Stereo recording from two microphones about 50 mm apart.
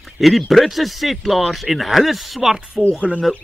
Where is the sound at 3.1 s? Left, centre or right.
Centre.